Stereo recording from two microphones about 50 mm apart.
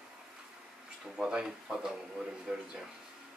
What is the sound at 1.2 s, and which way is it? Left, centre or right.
Speech, centre.